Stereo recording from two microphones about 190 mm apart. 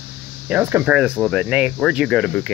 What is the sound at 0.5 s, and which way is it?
Speech, 10° right (ahead or behind).